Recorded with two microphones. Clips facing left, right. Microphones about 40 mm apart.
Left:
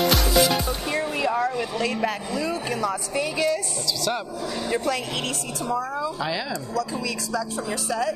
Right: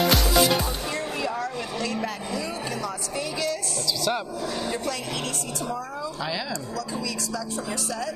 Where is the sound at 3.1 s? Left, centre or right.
Left.